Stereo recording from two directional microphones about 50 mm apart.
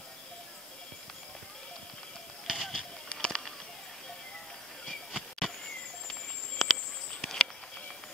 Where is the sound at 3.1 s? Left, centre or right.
Centre.